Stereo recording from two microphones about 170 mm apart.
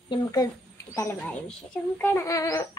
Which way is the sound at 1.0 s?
15° left (ahead or behind).